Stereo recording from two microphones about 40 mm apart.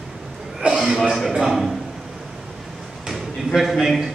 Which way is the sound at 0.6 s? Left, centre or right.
Right.